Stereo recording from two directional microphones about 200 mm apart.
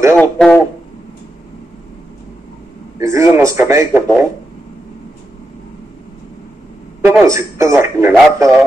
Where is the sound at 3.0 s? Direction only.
15° right (ahead or behind).